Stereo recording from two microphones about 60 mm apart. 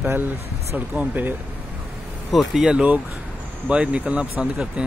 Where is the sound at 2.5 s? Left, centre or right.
Centre.